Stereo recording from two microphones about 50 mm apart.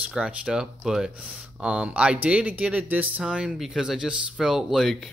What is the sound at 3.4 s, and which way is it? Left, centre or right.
Speech, centre.